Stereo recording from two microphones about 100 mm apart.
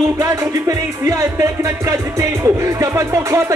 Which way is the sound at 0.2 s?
30° right (ahead or behind).